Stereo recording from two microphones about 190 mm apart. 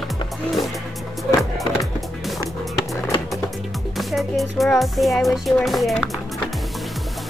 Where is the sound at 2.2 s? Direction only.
Centre (ahead or behind).